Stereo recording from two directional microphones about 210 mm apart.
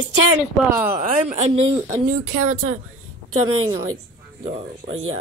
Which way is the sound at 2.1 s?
90° right.